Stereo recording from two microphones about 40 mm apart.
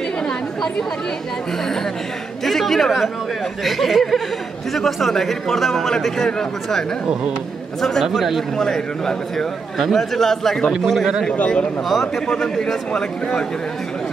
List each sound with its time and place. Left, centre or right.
2.4 s a man's voice: centre
7.8 s a man's voice: centre
8.5 s a man's voice: centre
11.3 s speech: left
12.3 s a man's voice: centre